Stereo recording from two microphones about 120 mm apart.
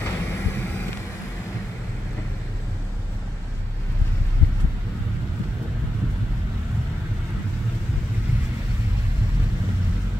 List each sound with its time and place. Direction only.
0.0 s vehicle: 20° left (ahead or behind)